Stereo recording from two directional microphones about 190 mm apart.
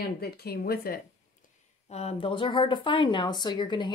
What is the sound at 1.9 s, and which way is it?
Speech, 35° left (ahead or behind).